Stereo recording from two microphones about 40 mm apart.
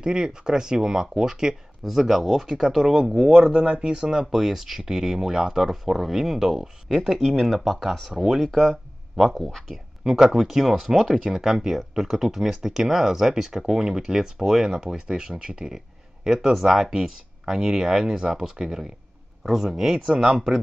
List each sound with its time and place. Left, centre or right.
0.0 s speech: centre
1.9 s speech: centre
3.3 s speech: centre
7.2 s speech: centre
10.3 s speech: centre
19.4 s speech: centre